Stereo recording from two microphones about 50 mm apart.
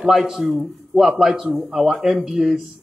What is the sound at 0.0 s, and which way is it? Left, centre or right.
A man's voice, centre.